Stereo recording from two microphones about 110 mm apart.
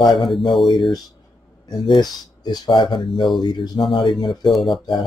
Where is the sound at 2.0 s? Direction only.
40° left (ahead or behind).